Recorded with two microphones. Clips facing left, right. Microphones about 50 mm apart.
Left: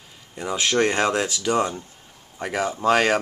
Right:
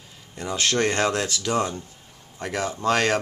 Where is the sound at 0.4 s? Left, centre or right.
Centre.